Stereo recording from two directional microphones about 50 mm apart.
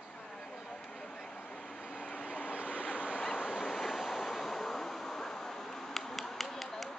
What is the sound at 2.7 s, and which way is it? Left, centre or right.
Vehicle, left.